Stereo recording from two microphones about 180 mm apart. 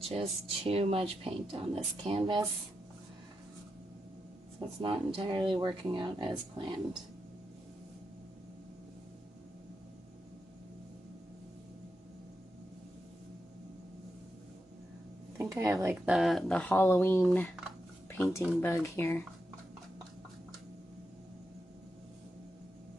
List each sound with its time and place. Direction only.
0.1 s speech: 35° right (ahead or behind)
4.6 s speech: 30° right (ahead or behind)
15.3 s speech: 15° right (ahead or behind); by 19.2 s 15° left (ahead or behind)